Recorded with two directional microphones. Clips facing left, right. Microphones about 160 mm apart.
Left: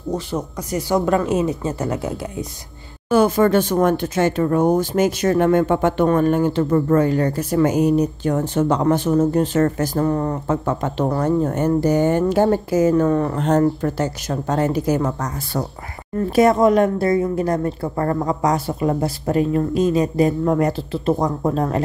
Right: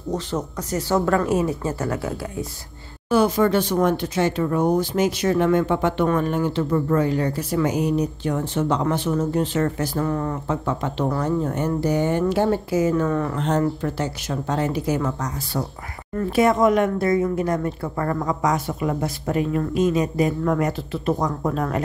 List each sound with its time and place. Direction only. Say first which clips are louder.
0.1 s a woman's voice: left 1 dB; 10° left (ahead or behind)
3.1 s a woman's voice: left 3 dB; 50° left (ahead or behind); by 21.8 s 30° left (ahead or behind)